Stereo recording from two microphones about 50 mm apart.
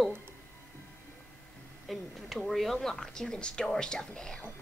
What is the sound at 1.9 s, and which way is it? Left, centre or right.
Speech, centre.